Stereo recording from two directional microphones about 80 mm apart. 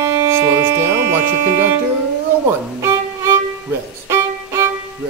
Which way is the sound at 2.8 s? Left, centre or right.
Right.